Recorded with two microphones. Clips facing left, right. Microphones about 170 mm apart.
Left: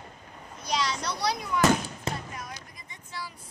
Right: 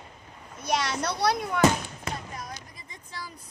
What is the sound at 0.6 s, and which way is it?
Speech, 60° right (ahead or behind).